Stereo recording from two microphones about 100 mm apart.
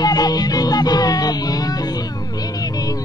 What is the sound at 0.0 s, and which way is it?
Music, 40° left (ahead or behind).